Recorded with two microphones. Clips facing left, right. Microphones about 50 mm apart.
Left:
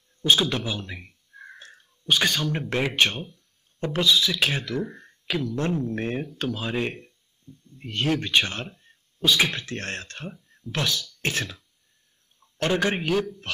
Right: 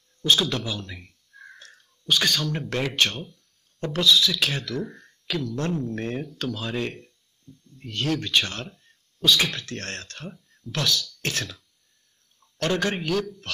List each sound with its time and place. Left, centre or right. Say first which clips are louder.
0.2 s a man's voice: left 1 dB; centre